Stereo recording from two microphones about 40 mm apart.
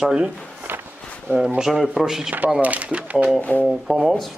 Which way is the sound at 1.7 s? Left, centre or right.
Centre.